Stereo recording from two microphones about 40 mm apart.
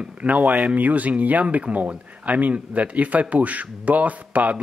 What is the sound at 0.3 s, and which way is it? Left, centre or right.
Speech, right.